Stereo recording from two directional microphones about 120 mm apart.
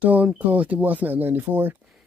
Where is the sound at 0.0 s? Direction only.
15° right (ahead or behind).